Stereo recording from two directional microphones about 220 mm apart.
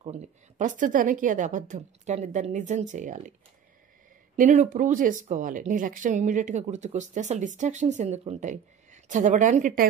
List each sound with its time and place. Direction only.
0.0 s speech: 30° right (ahead or behind)
4.4 s speech: 35° right (ahead or behind)